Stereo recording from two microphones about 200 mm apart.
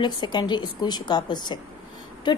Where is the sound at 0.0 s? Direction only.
20° left (ahead or behind).